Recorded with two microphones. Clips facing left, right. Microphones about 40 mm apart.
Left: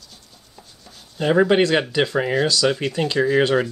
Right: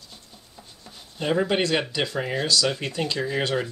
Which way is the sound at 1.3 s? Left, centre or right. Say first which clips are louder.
Left 6 dB; left.